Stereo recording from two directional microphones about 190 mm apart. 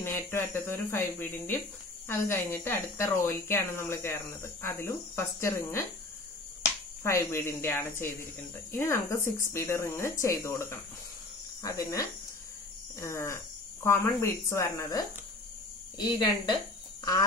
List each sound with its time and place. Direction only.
0.3 s speech: 15° left (ahead or behind)